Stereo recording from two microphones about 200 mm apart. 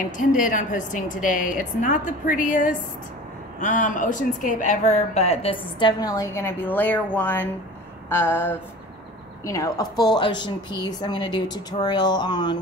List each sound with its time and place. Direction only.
0.3 s a woman's voice: 40° left (ahead or behind); by 7.4 s 10° left (ahead or behind)
8.1 s a sound: 10° left (ahead or behind)
9.4 s a woman's voice: 15° left (ahead or behind)